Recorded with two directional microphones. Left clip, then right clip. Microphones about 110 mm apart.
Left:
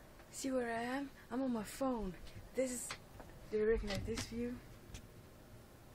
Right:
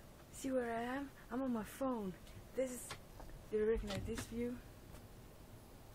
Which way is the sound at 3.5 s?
15° left (ahead or behind).